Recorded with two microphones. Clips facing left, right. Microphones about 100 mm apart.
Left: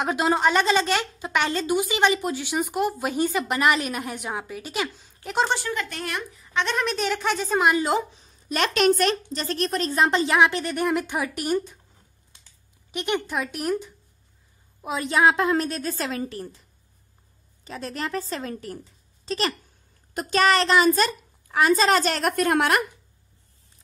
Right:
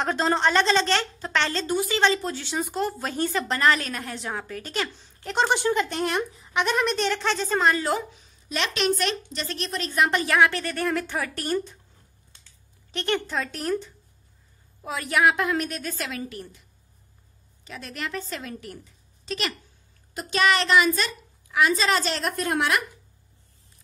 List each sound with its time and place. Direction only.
0.0 s a woman's voice: 10° left (ahead or behind)
5.5 s speech: 25° right (ahead or behind)
6.5 s a woman's voice: 5° right (ahead or behind); by 8.3 s 30° left (ahead or behind)
8.5 s a woman's voice: 50° left (ahead or behind); by 11.7 s 15° left (ahead or behind)
12.9 s a woman's voice: 15° left (ahead or behind); by 16.6 s 35° left (ahead or behind)
17.6 s a woman's voice: 35° left (ahead or behind); by 22.8 s 55° left (ahead or behind)